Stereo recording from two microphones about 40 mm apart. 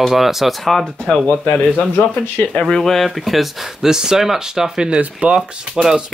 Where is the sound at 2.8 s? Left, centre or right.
Centre.